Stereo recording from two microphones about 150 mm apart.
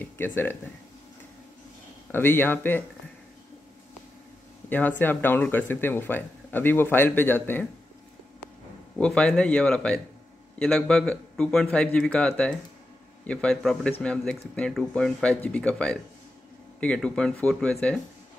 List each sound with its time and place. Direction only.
0.0 s speech: 15° left (ahead or behind)
2.1 s speech: 15° left (ahead or behind)
4.6 s speech: 10° left (ahead or behind)
8.9 s speech: 5° left (ahead or behind)